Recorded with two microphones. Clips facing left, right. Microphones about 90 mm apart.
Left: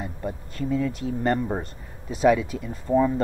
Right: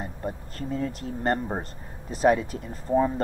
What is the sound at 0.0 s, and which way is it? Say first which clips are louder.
Speech: left 1 dB; 35° right (ahead or behind).